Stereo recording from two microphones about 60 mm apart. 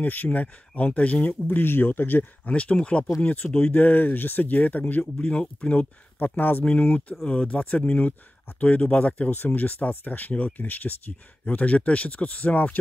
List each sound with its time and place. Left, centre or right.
0.0 s speech: left
6.1 s speech: left
6.6 s speech: centre